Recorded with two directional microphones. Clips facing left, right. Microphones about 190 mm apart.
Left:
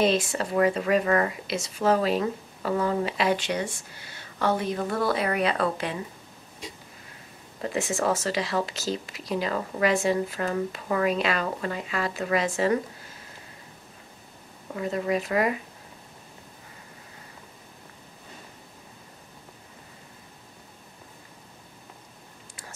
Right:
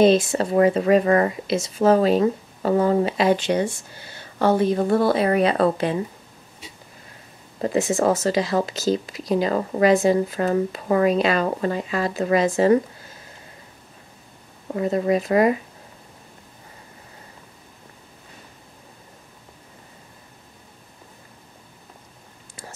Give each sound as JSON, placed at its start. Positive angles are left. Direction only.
{"t": 0.0, "sound": "speech", "side_deg": -30}
{"t": 7.6, "sound": "speech", "side_deg": -35}
{"t": 14.7, "sound": "speech", "side_deg": -35}